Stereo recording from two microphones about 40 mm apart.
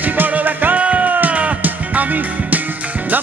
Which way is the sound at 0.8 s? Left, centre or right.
Right.